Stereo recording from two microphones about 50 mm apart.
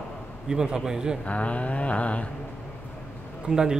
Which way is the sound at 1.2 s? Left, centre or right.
Left.